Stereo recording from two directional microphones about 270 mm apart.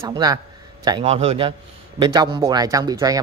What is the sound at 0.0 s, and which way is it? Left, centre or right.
Speech, centre.